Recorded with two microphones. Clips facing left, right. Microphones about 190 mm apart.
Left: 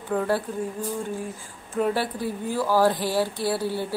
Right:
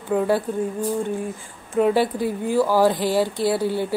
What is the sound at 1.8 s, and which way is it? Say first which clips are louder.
Speech: right 6 dB; 15° right (ahead or behind).